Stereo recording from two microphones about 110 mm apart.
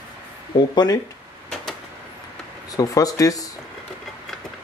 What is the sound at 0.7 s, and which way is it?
Speech, 40° left (ahead or behind).